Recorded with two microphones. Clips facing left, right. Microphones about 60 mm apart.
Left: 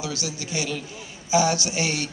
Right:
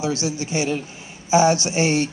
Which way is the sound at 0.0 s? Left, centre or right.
Right.